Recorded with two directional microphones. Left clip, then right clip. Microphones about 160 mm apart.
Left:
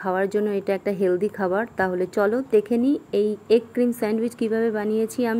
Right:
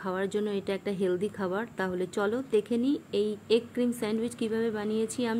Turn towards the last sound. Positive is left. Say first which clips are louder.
# left 7 dB
turn(degrees=10)  # may be behind; listen again after turning